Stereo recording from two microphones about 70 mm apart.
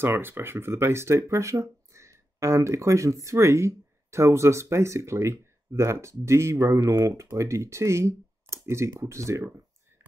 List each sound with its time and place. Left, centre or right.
0.0 s speech: right